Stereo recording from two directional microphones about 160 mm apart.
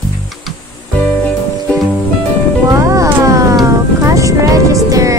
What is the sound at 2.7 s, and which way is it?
Music, 20° right (ahead or behind).